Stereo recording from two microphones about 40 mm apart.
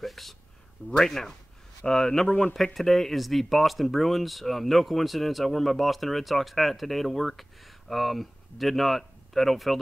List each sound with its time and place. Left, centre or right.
0.0 s a sound: centre
0.8 s speech: centre
2.2 s speech: left
2.5 s speech: centre